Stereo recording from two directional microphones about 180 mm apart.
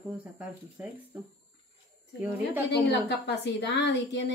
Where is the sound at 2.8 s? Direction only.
75° left (ahead or behind).